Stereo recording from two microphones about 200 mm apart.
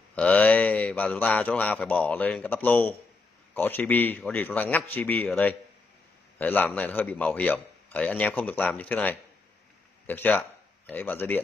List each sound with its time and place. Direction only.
0.1 s a man's voice: 5° left (ahead or behind)